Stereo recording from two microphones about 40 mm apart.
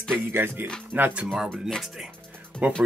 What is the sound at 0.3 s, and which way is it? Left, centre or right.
Speech, right.